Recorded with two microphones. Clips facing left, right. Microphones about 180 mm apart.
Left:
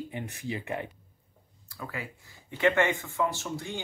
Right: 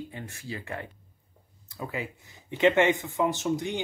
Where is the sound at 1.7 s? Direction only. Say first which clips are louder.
Right 4 dB; 20° right (ahead or behind).